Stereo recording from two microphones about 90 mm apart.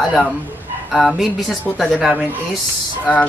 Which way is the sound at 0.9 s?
Centre (ahead or behind).